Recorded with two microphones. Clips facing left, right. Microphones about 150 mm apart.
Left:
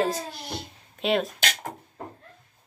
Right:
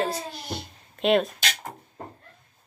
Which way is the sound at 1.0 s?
Centre (ahead or behind).